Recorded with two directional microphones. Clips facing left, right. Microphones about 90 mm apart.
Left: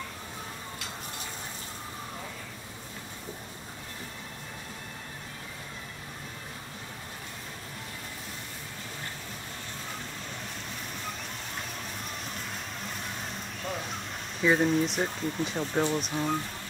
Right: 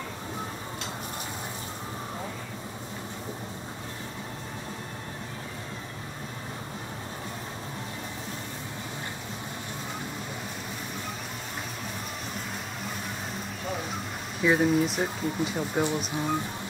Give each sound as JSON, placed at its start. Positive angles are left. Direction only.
{"t": 14.4, "sound": "speech", "side_deg": -5}